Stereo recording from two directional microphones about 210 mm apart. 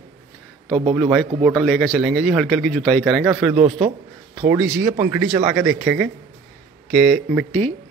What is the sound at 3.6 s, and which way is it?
Speech, 35° right (ahead or behind).